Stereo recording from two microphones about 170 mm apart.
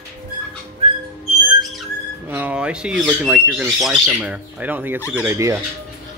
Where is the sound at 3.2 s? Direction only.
5° right (ahead or behind).